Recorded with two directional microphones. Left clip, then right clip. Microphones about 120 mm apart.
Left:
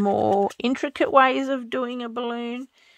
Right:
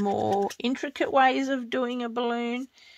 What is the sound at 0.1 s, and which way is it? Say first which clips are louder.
Speech: left 5 dB; 85° left.